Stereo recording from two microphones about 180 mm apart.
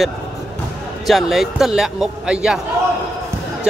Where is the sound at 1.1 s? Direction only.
Centre (ahead or behind).